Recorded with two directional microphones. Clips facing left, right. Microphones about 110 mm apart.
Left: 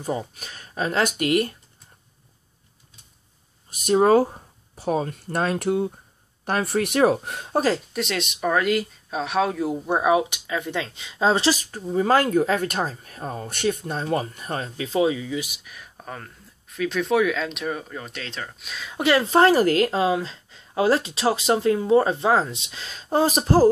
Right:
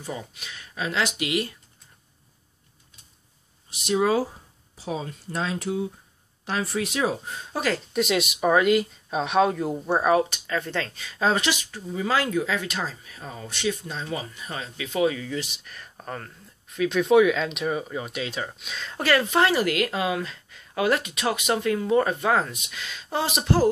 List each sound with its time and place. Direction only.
0.0 s speech: 40° left (ahead or behind)
3.7 s speech: 45° left (ahead or behind); by 7.5 s 65° left (ahead or behind)
7.9 s speech: 5° right (ahead or behind); by 15.0 s 35° left (ahead or behind)
15.0 s speech: 15° left (ahead or behind); by 18.6 s 10° right (ahead or behind)
18.6 s speech: centre (ahead or behind)
18.9 s speech: 20° left (ahead or behind)
19.2 s speech: 35° left (ahead or behind)